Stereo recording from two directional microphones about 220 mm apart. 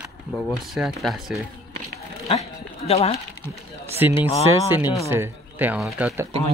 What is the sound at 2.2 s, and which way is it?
Speech, 30° left (ahead or behind).